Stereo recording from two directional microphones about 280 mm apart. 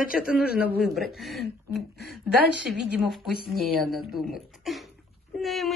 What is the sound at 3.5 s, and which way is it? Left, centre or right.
Speech, centre.